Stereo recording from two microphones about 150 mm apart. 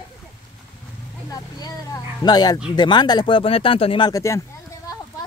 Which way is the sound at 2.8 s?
30° left (ahead or behind).